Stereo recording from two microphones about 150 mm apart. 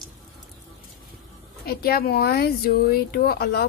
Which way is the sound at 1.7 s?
90° left.